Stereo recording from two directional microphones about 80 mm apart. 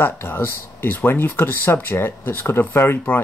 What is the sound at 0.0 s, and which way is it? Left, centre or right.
Speech, left.